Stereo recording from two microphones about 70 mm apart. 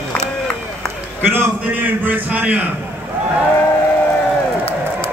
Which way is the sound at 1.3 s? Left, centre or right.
Right.